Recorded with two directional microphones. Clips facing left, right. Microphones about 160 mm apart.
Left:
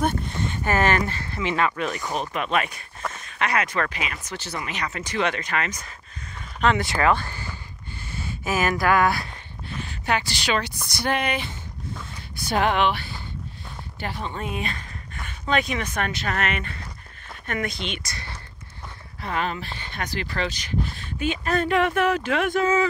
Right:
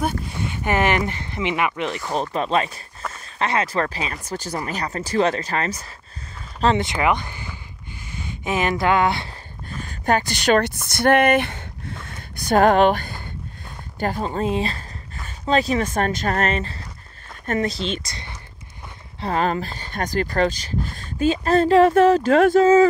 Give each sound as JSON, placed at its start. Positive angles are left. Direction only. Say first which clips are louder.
{"t": 0.0, "sound": "speech", "louder": "even", "side_deg": -5}
{"t": 6.9, "sound": "speech", "louder": "even", "side_deg": -15}
{"t": 9.7, "sound": "speech", "louder": "right 5 dB", "side_deg": -45}
{"t": 12.2, "sound": "speech", "louder": "right 7 dB", "side_deg": -45}